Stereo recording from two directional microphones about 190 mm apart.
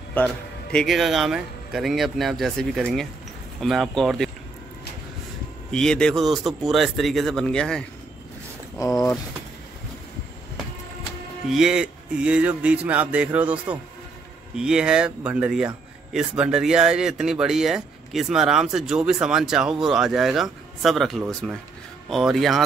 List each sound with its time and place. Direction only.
0.1 s speech: 5° left (ahead or behind)
5.7 s speech: 5° left (ahead or behind)
8.7 s speech: 20° left (ahead or behind)
11.5 s speech: 5° right (ahead or behind)